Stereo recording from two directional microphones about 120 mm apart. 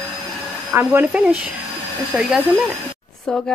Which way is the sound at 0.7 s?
15° right (ahead or behind).